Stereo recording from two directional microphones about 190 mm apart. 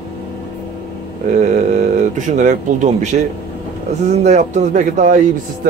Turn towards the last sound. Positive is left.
turn(degrees=-40)  # may be behind; listen again after turning